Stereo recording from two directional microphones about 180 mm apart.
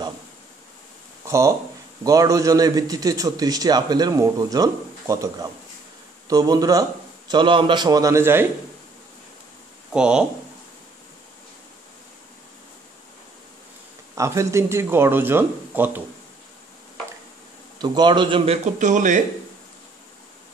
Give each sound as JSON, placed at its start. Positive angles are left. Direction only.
{"t": 1.2, "sound": "a sound", "side_deg": -15}
{"t": 2.0, "sound": "a man's voice", "side_deg": -20}
{"t": 9.9, "sound": "speech", "side_deg": -5}
{"t": 14.1, "sound": "speech", "side_deg": -15}
{"t": 17.7, "sound": "a man's voice", "side_deg": -25}